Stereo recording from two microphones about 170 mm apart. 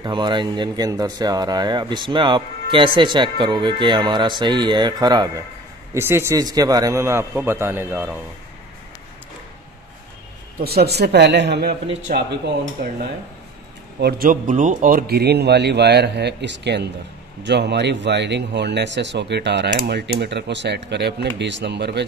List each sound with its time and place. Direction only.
0.0 s a man's voice: 25° right (ahead or behind); by 8.1 s 10° right (ahead or behind)
10.6 s a man's voice: 65° right (ahead or behind)
13.9 s a man's voice: 65° right (ahead or behind); by 22.0 s 85° right